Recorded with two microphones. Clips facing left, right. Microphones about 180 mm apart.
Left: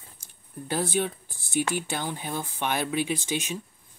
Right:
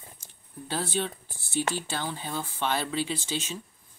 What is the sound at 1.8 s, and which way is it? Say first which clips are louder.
Speech: left 2 dB; 15° left (ahead or behind).